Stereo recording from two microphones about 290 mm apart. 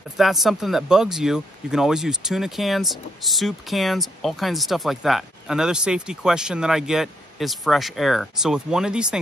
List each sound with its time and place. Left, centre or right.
0.2 s speech: centre